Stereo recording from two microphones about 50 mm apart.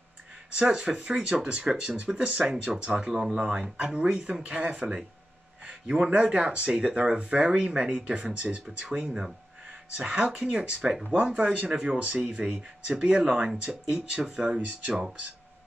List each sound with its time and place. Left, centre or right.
0.6 s speech: centre
5.7 s a sound: centre
6.2 s speech: right
14.6 s speech: right